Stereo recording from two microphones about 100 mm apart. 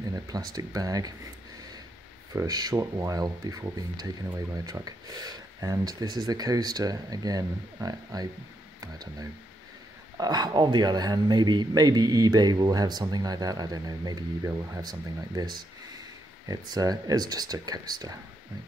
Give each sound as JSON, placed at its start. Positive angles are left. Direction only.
{"t": 0.1, "sound": "speech", "side_deg": -40}
{"t": 2.3, "sound": "speech", "side_deg": -40}
{"t": 10.1, "sound": "a man's voice", "side_deg": -40}